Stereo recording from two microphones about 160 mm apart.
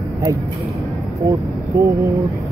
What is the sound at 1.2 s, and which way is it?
Speech, 20° right (ahead or behind).